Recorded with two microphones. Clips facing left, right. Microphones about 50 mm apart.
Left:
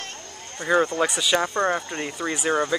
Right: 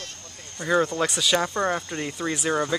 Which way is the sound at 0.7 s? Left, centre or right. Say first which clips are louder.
Left 2 dB; centre.